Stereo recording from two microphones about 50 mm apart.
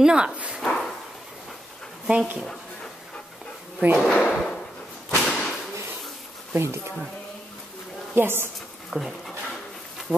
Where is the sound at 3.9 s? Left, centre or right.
Centre.